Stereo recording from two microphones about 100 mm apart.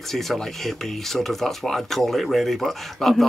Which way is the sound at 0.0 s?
Centre (ahead or behind).